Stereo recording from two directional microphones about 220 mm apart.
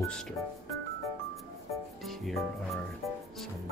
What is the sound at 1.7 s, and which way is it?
Music, centre (ahead or behind).